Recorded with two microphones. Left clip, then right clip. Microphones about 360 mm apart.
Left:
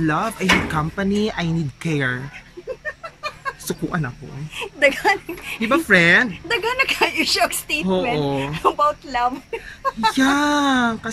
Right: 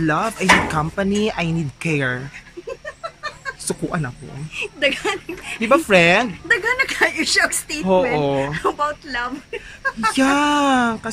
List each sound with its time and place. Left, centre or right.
0.0 s speech: centre
3.6 s speech: centre
4.6 s speech: centre
5.6 s speech: centre
6.5 s speech: centre
10.1 s speech: centre